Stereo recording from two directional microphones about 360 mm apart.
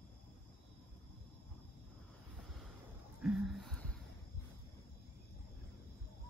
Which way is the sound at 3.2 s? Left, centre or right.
Centre.